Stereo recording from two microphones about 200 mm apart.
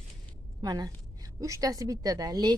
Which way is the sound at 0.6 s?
20° right (ahead or behind).